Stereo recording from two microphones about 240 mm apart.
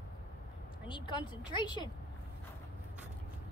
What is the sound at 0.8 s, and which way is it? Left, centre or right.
Speech, centre.